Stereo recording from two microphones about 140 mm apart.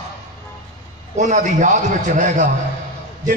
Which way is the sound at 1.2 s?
60° right (ahead or behind).